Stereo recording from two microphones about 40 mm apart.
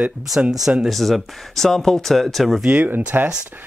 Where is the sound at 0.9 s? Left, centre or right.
Centre.